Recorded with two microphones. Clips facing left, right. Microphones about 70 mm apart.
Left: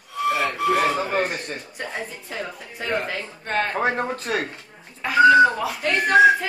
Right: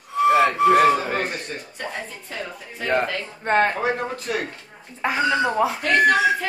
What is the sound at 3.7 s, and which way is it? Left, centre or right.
Speech, left.